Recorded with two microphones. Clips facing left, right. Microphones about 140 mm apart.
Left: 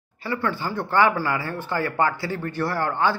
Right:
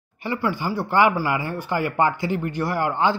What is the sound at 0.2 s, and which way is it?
Speech, 15° right (ahead or behind).